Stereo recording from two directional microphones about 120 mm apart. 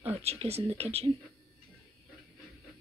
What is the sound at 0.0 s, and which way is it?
Speech, 60° right (ahead or behind).